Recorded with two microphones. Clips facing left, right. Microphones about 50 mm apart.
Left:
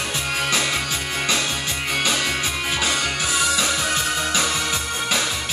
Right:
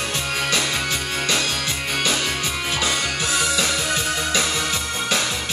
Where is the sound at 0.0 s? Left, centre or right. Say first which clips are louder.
Even; centre.